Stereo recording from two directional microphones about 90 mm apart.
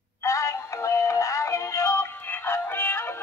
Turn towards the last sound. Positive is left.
turn(degrees=25)  # may be behind; listen again after turning